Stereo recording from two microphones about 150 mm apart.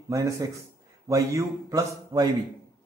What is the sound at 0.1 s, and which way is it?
A man's voice, 20° right (ahead or behind).